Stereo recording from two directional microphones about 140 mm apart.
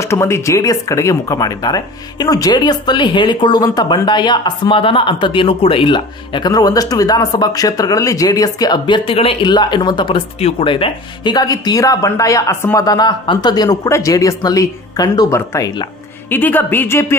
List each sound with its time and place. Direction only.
0.0 s a woman's voice: 20° left (ahead or behind)